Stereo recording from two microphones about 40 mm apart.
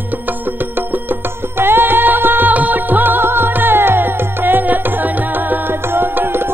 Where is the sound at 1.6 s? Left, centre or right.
Right.